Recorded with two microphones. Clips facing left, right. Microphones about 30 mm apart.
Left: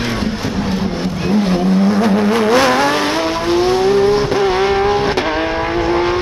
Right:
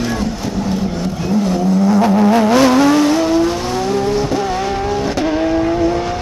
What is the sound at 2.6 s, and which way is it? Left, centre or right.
Vehicle, left.